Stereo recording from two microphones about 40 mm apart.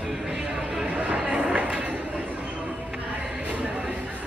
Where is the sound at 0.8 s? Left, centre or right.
Right.